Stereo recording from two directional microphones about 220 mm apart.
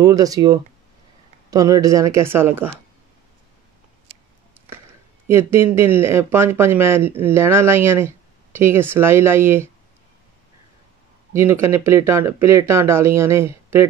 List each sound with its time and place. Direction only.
0.0 s speech: 15° right (ahead or behind)
5.3 s speech: 10° right (ahead or behind)
11.3 s speech: 10° right (ahead or behind)